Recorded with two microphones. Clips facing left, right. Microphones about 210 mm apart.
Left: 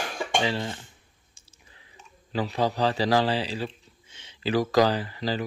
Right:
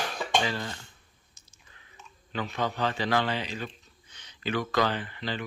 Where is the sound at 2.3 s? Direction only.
35° left (ahead or behind).